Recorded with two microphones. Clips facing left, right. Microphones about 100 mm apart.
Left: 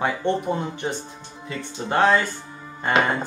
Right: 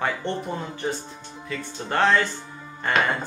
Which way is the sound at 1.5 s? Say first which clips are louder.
Left 2 dB; 15° left (ahead or behind).